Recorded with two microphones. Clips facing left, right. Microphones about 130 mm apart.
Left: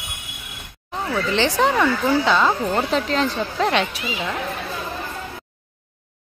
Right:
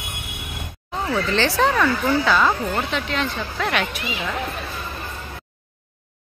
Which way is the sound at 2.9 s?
35° left (ahead or behind).